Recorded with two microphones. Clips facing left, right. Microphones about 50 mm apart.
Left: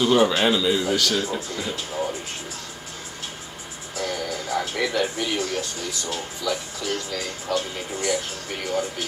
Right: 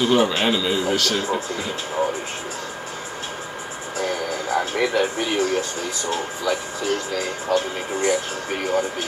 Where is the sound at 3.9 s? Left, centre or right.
Right.